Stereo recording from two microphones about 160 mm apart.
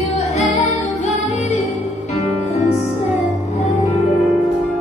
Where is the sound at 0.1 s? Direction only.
45° left (ahead or behind).